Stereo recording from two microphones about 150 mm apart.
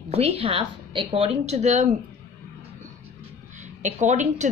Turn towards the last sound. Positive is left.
turn(degrees=-55)  # may be behind; listen again after turning